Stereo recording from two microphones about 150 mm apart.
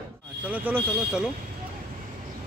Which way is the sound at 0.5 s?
10° right (ahead or behind).